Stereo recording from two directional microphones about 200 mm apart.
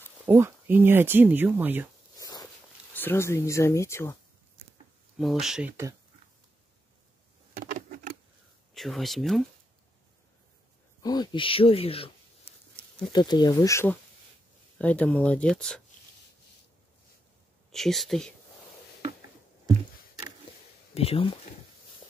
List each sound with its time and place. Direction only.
0.3 s speech: 10° right (ahead or behind)
2.1 s a sound: 20° left (ahead or behind)
5.1 s speech: centre (ahead or behind)
8.7 s speech: centre (ahead or behind)
11.0 s speech: 20° left (ahead or behind)
13.1 s speech: 20° left (ahead or behind); by 15.8 s 5° left (ahead or behind)
17.6 s speech: centre (ahead or behind)
20.9 s speech: 30° left (ahead or behind)